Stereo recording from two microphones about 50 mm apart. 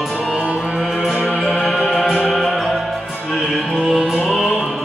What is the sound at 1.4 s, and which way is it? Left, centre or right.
Music, centre.